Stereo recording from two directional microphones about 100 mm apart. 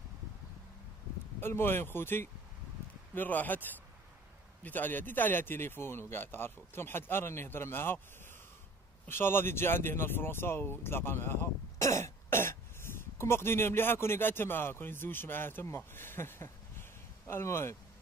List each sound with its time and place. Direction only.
1.4 s speech: 25° left (ahead or behind)
9.0 s speech: 20° left (ahead or behind)
11.8 s throat clearing: 30° left (ahead or behind)
13.2 s speech: 25° left (ahead or behind)